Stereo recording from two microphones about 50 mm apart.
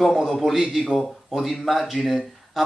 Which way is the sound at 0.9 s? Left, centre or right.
Centre.